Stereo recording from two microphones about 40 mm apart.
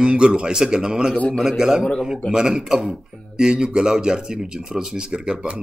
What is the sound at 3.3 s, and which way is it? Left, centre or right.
Speech, right.